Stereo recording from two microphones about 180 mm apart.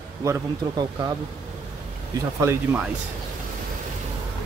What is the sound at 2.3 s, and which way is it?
Speech, 15° right (ahead or behind).